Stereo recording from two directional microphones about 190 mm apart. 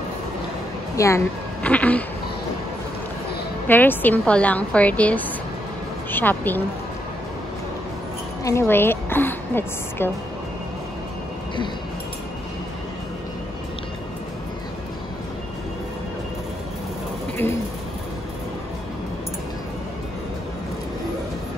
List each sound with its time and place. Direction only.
0.9 s a woman's voice: 15° left (ahead or behind)
3.6 s a woman's voice: 10° left (ahead or behind)
8.5 s a woman's voice: 15° left (ahead or behind)